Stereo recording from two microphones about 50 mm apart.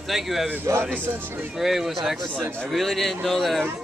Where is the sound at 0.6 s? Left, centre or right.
Right.